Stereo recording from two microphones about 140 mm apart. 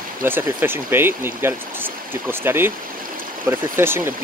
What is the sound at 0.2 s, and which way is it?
Speech, 15° right (ahead or behind).